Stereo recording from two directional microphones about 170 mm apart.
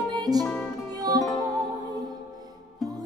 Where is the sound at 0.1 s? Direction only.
25° right (ahead or behind).